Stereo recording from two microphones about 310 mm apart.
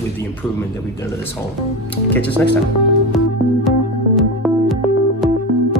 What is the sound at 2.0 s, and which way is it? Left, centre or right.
Speech, left.